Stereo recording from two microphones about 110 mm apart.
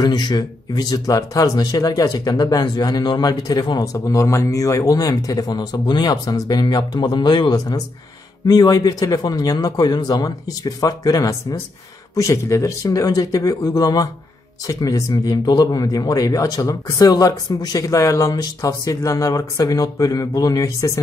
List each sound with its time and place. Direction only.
0.0 s speech: 40° left (ahead or behind)